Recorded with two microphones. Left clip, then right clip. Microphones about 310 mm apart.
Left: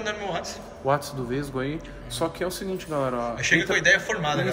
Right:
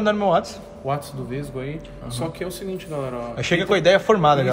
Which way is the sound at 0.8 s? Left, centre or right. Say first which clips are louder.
Left 2 dB; centre.